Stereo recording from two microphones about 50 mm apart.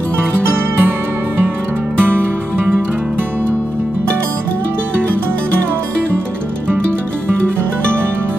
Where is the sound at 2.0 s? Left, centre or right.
Right.